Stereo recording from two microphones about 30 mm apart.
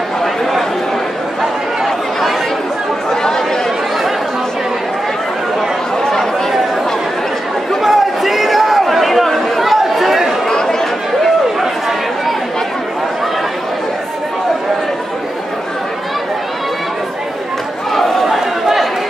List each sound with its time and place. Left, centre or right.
0.2 s a sound: centre
3.1 s chatter: centre
7.8 s chatter: centre
10.5 s chatter: left
18.2 s chatter: centre